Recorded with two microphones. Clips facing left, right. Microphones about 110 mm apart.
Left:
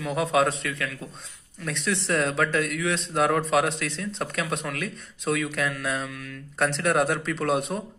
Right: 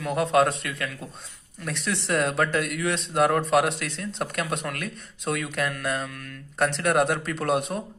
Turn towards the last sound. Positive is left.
turn(degrees=0)  # may be behind; listen again after turning